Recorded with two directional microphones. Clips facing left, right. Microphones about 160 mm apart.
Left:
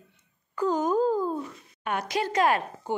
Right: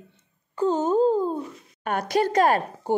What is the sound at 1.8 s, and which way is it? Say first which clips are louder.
A woman's voice: right 5 dB; 45° right (ahead or behind).